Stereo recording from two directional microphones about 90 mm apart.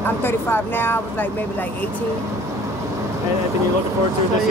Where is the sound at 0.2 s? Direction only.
25° left (ahead or behind).